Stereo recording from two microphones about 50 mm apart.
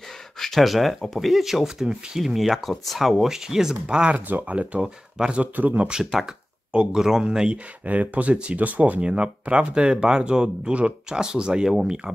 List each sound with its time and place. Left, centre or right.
0.4 s speech: centre
4.3 s speech: right
4.8 s speech: centre
5.4 s speech: right
6.7 s speech: centre
7.8 s speech: right